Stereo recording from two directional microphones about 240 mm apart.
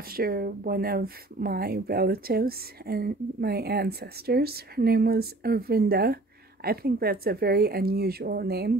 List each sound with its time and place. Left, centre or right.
0.1 s speech: right